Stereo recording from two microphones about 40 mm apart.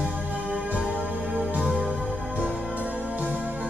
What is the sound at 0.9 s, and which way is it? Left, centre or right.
Music, right.